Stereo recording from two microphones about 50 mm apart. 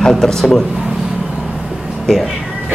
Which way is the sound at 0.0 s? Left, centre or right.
Centre.